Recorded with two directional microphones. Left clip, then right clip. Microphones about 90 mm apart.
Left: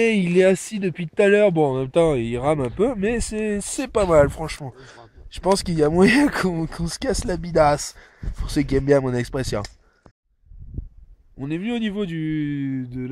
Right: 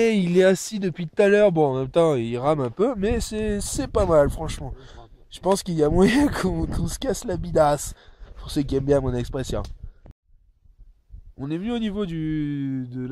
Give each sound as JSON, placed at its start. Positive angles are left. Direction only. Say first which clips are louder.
{"t": 0.0, "sound": "speech", "louder": "left 1 dB", "side_deg": -15}
{"t": 3.5, "sound": "speech", "louder": "left 1 dB", "side_deg": -30}
{"t": 4.1, "sound": "speech", "louder": "left 3 dB", "side_deg": 0}
{"t": 11.3, "sound": "speech", "louder": "left 1 dB", "side_deg": 0}